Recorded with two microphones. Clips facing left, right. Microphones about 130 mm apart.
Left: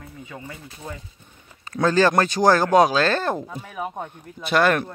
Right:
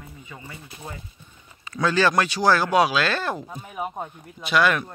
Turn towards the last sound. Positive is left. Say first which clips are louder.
# left 2 dB
turn(degrees=45)  # may be behind; listen again after turning